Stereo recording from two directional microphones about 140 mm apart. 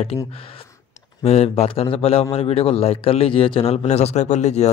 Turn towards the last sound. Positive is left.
turn(degrees=55)  # may be behind; listen again after turning